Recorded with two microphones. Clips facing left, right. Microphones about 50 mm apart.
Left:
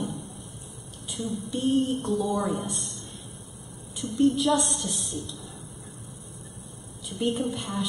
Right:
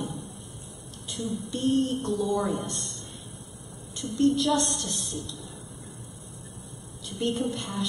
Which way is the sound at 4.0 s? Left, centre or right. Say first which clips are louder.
Left 1 dB; centre.